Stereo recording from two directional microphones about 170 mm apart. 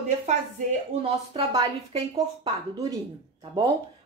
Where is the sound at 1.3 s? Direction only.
30° right (ahead or behind).